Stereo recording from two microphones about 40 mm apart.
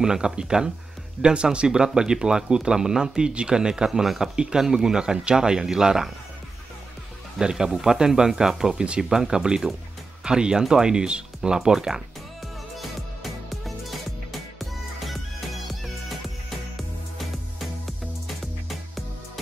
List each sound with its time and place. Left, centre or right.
0.0 s speech: centre
7.3 s speech: centre
12.7 s music: centre
17.2 s music: centre